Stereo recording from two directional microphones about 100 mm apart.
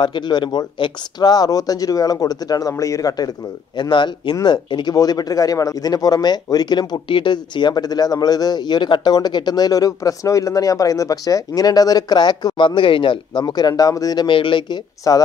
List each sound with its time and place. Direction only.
0.0 s speech: 50° left (ahead or behind)
3.7 s speech: 50° left (ahead or behind)
4.9 s speech: 40° left (ahead or behind)
14.2 s speech: 55° left (ahead or behind)
15.0 s speech: 40° left (ahead or behind)